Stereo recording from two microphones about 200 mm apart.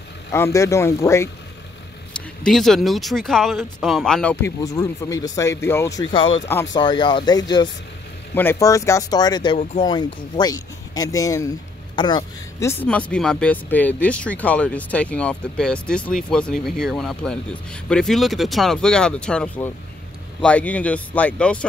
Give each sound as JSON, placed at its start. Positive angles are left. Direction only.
{"t": 0.3, "sound": "speech", "side_deg": 15}
{"t": 2.4, "sound": "speech", "side_deg": 0}